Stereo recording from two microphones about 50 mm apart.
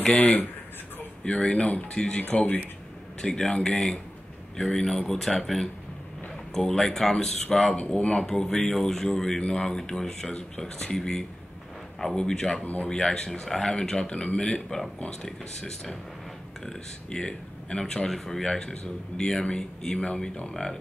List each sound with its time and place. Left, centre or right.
0.0 s speech: left
2.3 s speech: left
3.2 s speech: centre
8.2 s speech: centre